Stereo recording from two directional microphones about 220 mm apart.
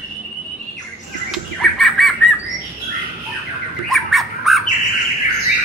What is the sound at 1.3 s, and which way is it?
Bird, centre (ahead or behind).